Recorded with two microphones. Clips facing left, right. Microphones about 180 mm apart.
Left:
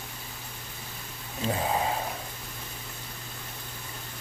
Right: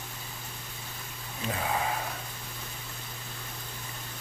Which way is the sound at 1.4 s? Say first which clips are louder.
Left 3 dB; 25° left (ahead or behind).